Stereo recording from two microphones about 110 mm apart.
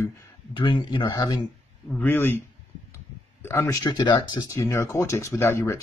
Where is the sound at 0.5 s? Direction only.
45° left (ahead or behind).